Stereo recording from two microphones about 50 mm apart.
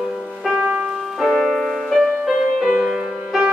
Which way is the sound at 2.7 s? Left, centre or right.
Centre.